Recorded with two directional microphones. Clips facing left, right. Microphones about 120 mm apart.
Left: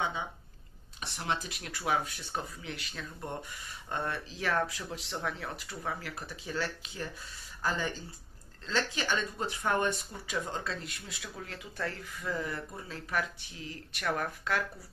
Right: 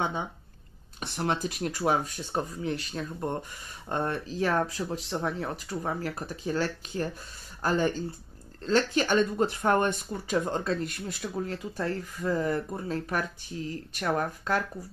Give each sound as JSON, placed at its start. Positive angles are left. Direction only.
{"t": 1.0, "sound": "speech", "side_deg": -45}